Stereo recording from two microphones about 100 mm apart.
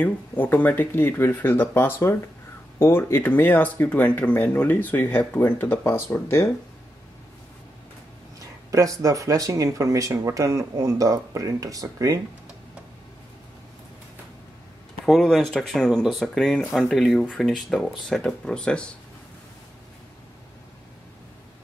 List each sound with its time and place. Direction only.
0.0 s speech: 20° left (ahead or behind)
9.0 s speech: 35° right (ahead or behind)
15.0 s speech: centre (ahead or behind)